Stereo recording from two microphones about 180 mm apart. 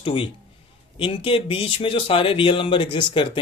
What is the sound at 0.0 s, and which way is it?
A man's voice, 30° left (ahead or behind).